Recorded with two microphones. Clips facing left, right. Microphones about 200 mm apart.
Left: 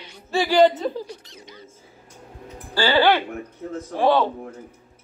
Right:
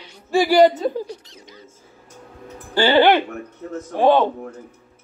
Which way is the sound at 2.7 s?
20° right (ahead or behind).